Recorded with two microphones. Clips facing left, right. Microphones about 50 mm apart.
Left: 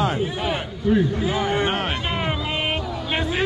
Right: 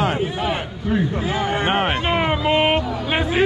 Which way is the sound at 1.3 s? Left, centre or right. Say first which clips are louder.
Right 2 dB; right.